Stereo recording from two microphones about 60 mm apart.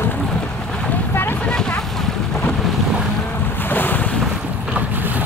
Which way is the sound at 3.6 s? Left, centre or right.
Left.